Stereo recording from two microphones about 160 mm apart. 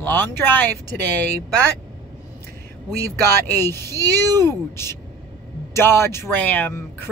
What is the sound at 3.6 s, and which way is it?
A man's voice, 15° left (ahead or behind).